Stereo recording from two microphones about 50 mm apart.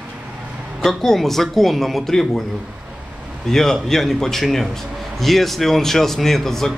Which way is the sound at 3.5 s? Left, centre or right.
Centre.